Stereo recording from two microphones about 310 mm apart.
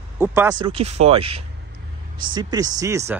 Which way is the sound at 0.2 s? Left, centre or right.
Centre.